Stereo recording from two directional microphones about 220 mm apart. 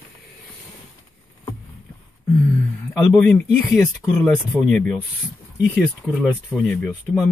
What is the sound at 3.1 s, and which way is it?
Speech, 5° left (ahead or behind).